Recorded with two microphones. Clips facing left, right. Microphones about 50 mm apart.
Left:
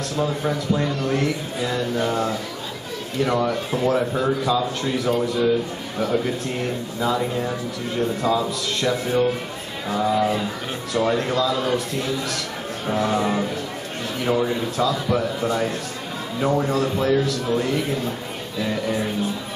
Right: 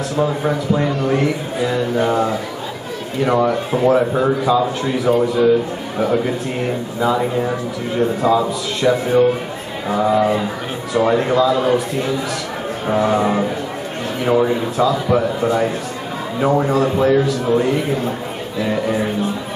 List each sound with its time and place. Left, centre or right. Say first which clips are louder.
0.1 s a man's voice: right 5 dB; centre